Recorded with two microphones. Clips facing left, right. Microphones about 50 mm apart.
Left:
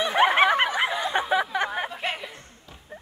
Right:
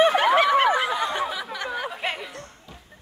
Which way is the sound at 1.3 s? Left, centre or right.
Left.